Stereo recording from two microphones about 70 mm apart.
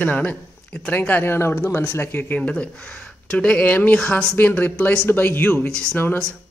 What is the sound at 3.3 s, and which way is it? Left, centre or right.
Speech, centre.